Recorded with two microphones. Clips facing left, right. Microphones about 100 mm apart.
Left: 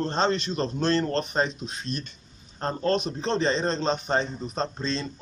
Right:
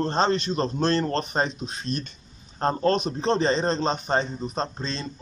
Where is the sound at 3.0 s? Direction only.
15° right (ahead or behind).